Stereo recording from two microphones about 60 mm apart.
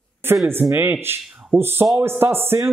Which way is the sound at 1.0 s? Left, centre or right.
Right.